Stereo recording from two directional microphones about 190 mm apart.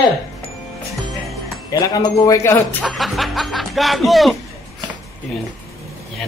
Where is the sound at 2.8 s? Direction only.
Centre (ahead or behind).